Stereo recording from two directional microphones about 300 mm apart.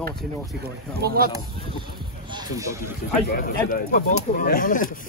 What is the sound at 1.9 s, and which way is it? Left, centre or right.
Music, centre.